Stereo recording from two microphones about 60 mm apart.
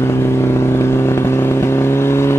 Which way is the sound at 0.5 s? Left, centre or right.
Left.